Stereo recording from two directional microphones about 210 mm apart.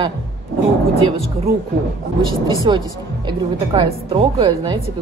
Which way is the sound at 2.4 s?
25° right (ahead or behind).